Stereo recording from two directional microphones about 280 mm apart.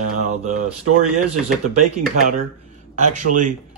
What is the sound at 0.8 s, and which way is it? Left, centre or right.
Speech, right.